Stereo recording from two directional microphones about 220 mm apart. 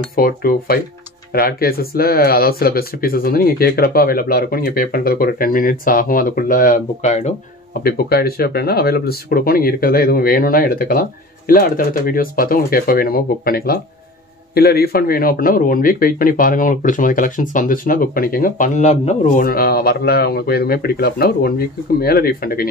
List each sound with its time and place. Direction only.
0.1 s a man's voice: 40° left (ahead or behind)
7.8 s a man's voice: 45° left (ahead or behind)